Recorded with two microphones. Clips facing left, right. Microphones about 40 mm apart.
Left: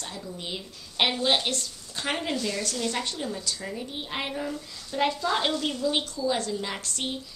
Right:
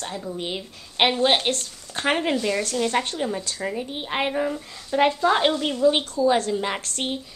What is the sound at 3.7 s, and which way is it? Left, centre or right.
A woman's voice, right.